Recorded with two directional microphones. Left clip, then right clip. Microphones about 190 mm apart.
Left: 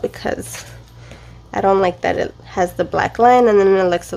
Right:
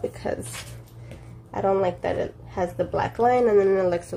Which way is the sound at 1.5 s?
40° left (ahead or behind).